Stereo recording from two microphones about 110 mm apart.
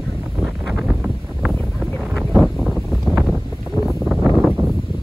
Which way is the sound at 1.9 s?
Centre (ahead or behind).